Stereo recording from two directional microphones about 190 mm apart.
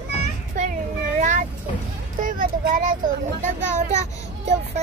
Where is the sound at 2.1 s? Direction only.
45° right (ahead or behind).